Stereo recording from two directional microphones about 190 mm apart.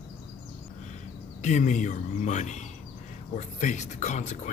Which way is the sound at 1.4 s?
40° left (ahead or behind).